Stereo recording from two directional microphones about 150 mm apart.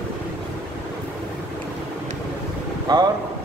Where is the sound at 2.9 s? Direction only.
25° right (ahead or behind).